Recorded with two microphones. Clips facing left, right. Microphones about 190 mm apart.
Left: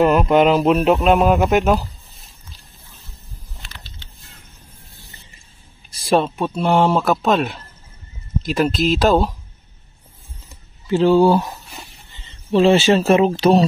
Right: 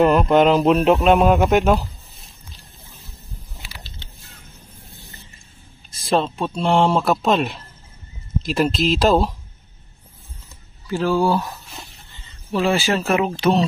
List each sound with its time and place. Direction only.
0.0 s speech: 5° left (ahead or behind)
5.9 s speech: 10° left (ahead or behind)
10.9 s speech: 25° left (ahead or behind)